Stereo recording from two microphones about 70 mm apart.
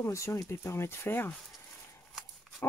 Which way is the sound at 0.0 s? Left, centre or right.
Left.